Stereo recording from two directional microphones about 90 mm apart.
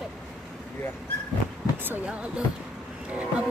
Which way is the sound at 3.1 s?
15° right (ahead or behind).